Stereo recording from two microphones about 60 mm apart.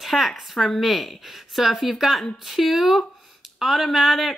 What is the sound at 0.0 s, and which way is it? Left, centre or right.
Speech, centre.